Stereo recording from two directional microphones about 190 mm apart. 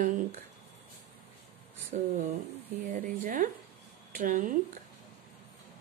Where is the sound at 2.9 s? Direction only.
40° right (ahead or behind).